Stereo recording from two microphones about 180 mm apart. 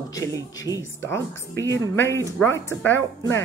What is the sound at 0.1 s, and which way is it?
Speech, 15° left (ahead or behind).